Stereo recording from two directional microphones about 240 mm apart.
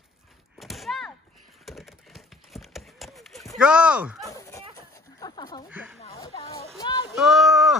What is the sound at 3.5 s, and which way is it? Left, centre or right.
Speech, centre.